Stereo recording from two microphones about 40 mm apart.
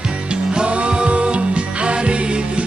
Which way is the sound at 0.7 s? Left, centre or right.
Right.